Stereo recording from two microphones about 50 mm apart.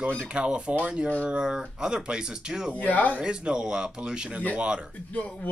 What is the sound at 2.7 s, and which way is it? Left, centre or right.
Speech, left.